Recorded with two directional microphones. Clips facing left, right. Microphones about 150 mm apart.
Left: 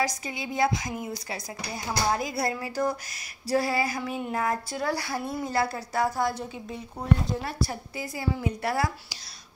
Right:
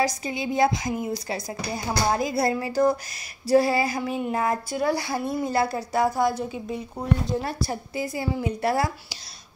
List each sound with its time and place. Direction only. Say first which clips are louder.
0.0 s a woman's voice: right 4 dB; 25° right (ahead or behind); by 6.8 s 10° right (ahead or behind)
7.4 s a woman's voice: right 2 dB; 25° right (ahead or behind)